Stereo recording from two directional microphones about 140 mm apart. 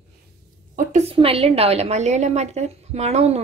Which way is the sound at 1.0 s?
45° right (ahead or behind).